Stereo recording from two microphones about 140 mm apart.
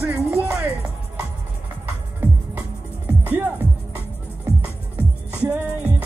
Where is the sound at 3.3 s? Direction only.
15° right (ahead or behind).